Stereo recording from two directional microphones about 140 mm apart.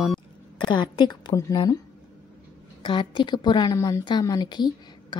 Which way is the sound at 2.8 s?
35° left (ahead or behind).